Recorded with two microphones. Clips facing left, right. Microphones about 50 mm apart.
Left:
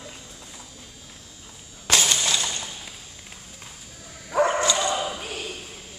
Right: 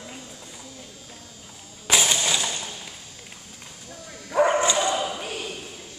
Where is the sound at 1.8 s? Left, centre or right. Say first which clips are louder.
Even; centre.